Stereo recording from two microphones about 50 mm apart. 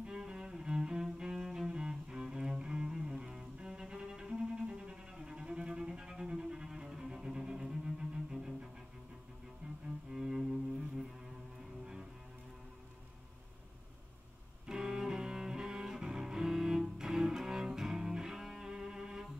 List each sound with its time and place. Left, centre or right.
0.0 s cello: centre
9.6 s cello: right
10.1 s cello: centre
11.8 s music: centre
14.7 s cello: centre